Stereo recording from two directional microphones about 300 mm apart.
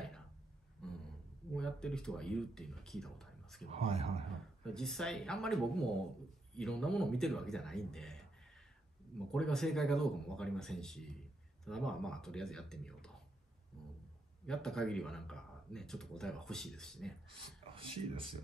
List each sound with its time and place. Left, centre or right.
1.5 s speech: centre
3.7 s a man's voice: centre
4.6 s speech: centre
9.3 s speech: centre
14.4 s speech: centre
17.7 s speech: centre